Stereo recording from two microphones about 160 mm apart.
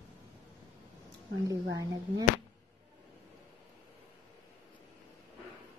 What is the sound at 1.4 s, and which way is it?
Speech, 20° right (ahead or behind).